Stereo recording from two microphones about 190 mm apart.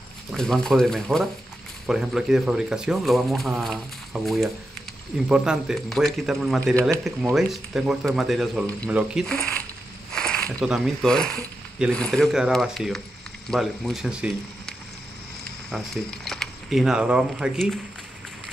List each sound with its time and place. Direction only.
0.3 s speech: 5° left (ahead or behind)
8.6 s speech: 15° right (ahead or behind)
9.1 s speech: 5° left (ahead or behind)